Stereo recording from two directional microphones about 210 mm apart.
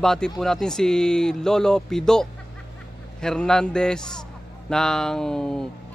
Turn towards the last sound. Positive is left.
turn(degrees=5)  # may be behind; listen again after turning